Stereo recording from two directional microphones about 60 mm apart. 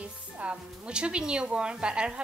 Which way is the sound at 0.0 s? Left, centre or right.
Centre.